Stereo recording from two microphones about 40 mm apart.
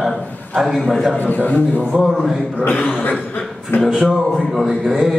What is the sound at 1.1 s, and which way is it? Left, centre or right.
Speech, left.